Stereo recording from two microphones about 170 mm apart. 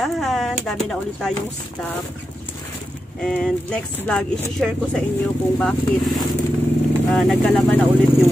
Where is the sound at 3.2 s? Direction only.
5° left (ahead or behind).